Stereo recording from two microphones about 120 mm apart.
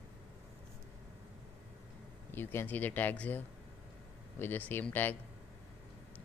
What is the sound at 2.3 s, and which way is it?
Speech, 20° left (ahead or behind).